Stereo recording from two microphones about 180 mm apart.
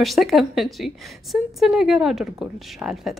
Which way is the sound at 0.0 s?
Centre (ahead or behind).